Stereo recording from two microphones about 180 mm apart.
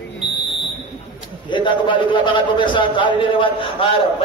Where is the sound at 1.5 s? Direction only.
25° left (ahead or behind).